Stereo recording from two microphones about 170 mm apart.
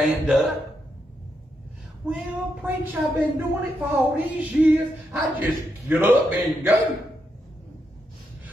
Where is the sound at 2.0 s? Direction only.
5° right (ahead or behind).